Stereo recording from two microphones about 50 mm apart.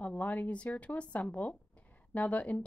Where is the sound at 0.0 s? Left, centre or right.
Left.